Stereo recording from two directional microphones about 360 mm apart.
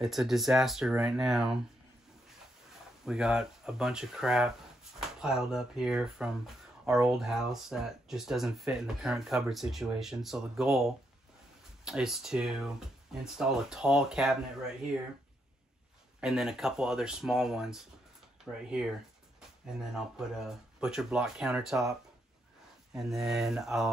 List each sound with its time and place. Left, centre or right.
0.0 s speech: centre
3.1 s speech: centre
16.2 s speech: centre
19.8 s speech: centre
22.9 s speech: centre